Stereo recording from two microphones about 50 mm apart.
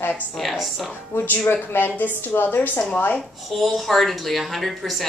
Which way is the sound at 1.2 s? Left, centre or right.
Left.